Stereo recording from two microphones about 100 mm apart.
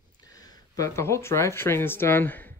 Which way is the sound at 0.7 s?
30° left (ahead or behind).